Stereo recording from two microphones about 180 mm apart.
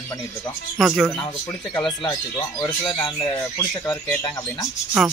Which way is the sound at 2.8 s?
25° left (ahead or behind).